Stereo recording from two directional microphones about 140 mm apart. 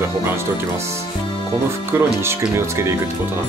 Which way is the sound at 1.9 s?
15° right (ahead or behind).